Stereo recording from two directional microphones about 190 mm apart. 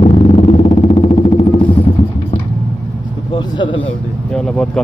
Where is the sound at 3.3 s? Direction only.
25° left (ahead or behind).